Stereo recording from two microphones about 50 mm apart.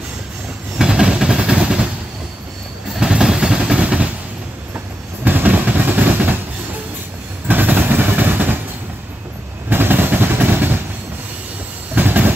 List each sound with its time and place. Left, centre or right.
0.7 s train: centre
3.0 s train: centre
4.7 s train: right
7.4 s vehicle: right
9.7 s vehicle: right
11.9 s train: right